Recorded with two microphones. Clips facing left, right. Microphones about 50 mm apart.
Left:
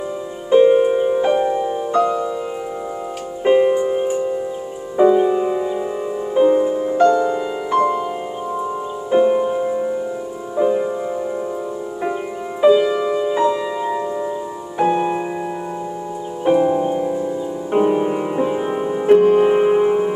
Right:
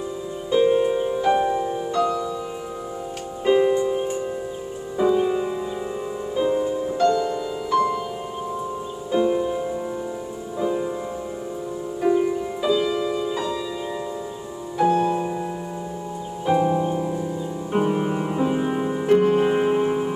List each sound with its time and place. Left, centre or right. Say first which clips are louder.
0.5 s music: left 6 dB; left
1.3 s music: left 3 dB; centre
1.6 s music: left 5 dB; left
3.4 s music: left 4 dB; left
9.1 s music: left 6 dB; left
12.0 s music: right 6 dB; left
16.5 s music: left 3 dB; centre